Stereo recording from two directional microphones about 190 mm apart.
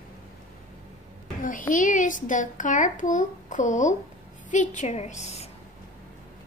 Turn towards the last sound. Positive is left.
turn(degrees=35)  # may be behind; listen again after turning